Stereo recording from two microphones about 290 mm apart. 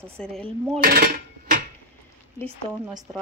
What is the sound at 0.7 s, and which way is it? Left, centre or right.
Dishes, right.